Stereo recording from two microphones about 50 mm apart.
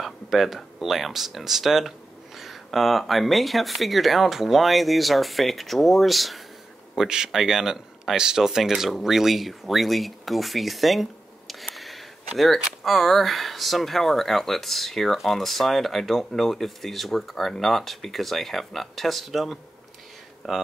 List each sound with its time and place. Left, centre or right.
0.0 s speech: centre